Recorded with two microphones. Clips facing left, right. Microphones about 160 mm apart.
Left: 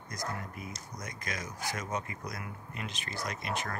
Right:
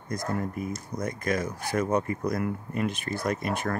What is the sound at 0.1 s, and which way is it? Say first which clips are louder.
Speech: right 9 dB; 55° right (ahead or behind).